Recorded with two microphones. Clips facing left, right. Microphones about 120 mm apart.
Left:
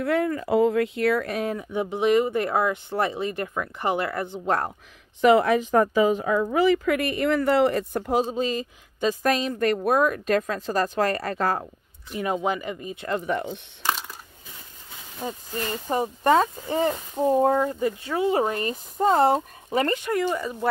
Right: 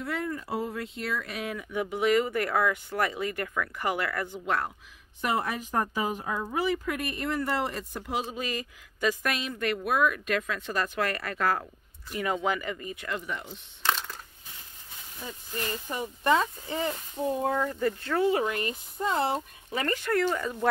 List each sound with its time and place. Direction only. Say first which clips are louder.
0.0 s speech: left 9 dB; 70° left (ahead or behind)
1.3 s speech: left 6 dB; 35° left (ahead or behind)
4.5 s speech: left 5 dB; 35° left (ahead or behind)
5.2 s a woman's voice: left 12 dB; 90° left; by 8.4 s 40° left (ahead or behind)
8.4 s speech: left 8 dB; 25° left (ahead or behind)
12.1 s speech: left 3 dB; centre (ahead or behind)
12.4 s speech: left 3 dB; 20° left (ahead or behind)
13.2 s speech: left 10 dB; 55° left (ahead or behind)
13.8 s crushing: left 2 dB; 10° left (ahead or behind)
15.5 s speech: left 6 dB; 35° left (ahead or behind)
17.7 s speech: left 2 dB; 15° left (ahead or behind)
18.3 s speech: left 4 dB; 35° left (ahead or behind)
19.8 s speech: left 3 dB; 20° left (ahead or behind)